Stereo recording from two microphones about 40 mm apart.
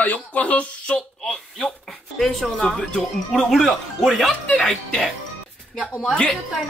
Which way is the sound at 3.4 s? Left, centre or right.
Centre.